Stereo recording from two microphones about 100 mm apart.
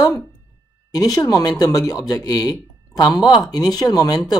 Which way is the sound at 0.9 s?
40° left (ahead or behind).